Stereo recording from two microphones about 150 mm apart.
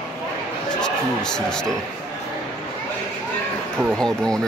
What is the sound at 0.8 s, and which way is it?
Speech, 5° left (ahead or behind).